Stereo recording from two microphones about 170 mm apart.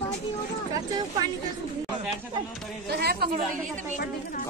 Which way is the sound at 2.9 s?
70° right (ahead or behind).